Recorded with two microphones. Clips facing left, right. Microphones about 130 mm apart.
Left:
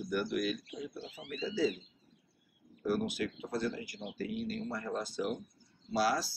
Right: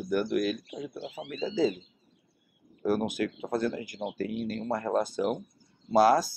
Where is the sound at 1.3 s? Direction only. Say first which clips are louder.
Right 5 dB; 50° right (ahead or behind).